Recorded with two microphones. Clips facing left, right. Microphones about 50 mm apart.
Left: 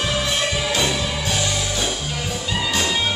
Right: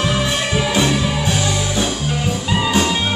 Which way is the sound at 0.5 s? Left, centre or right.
Centre.